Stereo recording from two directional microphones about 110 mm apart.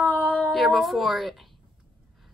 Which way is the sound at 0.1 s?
15° left (ahead or behind).